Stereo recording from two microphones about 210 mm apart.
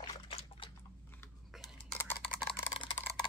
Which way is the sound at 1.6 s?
10° left (ahead or behind).